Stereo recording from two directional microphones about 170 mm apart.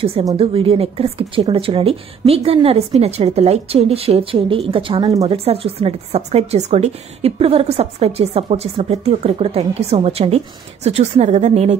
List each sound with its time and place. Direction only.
0.4 s speech: 35° right (ahead or behind)